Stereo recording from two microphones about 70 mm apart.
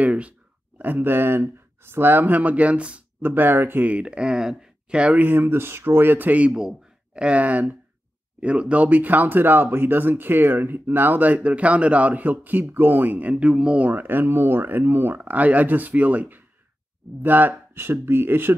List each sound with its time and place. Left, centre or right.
0.0 s speech: centre
3.2 s speech: right
6.5 s speech: centre; by 18.5 s right